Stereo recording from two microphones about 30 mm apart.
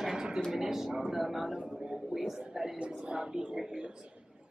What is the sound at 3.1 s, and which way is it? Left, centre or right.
Speech, right.